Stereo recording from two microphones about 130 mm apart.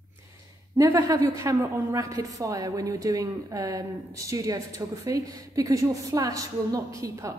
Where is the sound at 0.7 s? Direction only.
25° right (ahead or behind).